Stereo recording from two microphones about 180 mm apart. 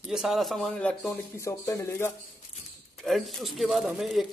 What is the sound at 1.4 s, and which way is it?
Speech, 15° left (ahead or behind).